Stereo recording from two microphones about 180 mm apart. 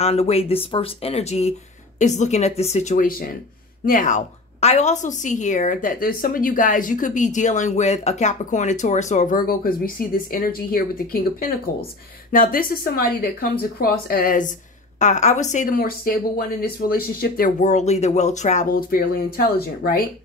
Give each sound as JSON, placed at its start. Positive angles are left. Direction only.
{"t": 0.0, "sound": "a woman's voice", "side_deg": 35}
{"t": 15.0, "sound": "a woman's voice", "side_deg": 40}